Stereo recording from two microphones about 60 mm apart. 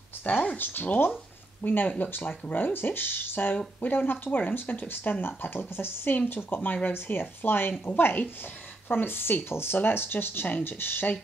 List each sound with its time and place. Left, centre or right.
0.6 s speech: left